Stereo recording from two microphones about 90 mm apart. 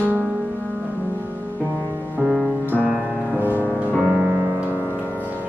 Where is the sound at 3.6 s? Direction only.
20° right (ahead or behind).